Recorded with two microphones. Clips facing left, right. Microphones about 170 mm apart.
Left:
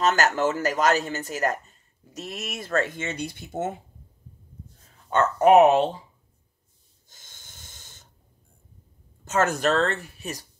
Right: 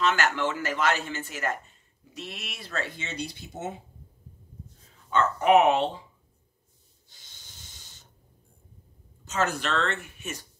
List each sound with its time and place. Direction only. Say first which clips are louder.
0.0 s speech: left 4 dB; 40° left (ahead or behind)
5.1 s speech: left 4 dB; 40° left (ahead or behind)
7.1 s snort: left 3 dB; 50° left (ahead or behind)
9.2 s speech: left 6 dB; 50° left (ahead or behind)